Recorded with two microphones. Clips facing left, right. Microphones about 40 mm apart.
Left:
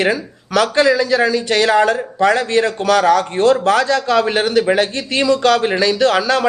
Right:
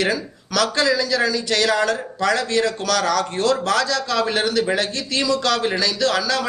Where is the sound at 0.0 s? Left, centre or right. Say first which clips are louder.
Left 4 dB; left.